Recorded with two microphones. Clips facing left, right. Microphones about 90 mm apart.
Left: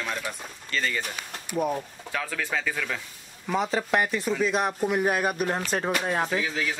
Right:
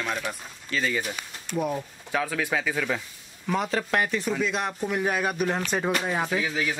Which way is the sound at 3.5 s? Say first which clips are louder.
Left 1 dB; 5° left (ahead or behind).